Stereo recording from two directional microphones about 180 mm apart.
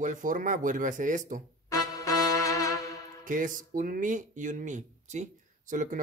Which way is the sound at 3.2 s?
45° right (ahead or behind).